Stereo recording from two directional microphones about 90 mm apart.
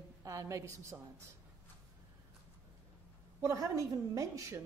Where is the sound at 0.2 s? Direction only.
35° right (ahead or behind).